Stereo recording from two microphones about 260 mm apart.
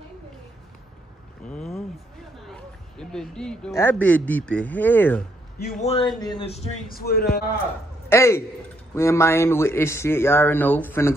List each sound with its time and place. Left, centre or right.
1.5 s vehicle: centre
2.5 s a man's voice: centre
5.6 s a man's voice: left
5.9 s speech: centre
7.0 s a man's voice: left
8.1 s speech: centre